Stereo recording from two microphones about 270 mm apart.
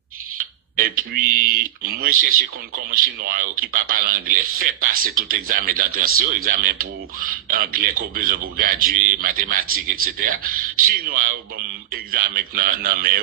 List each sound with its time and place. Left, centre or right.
0.7 s speech: right